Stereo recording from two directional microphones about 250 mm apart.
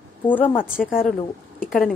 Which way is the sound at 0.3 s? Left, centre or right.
Centre.